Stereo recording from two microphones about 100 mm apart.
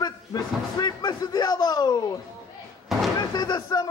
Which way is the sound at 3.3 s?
45° left (ahead or behind).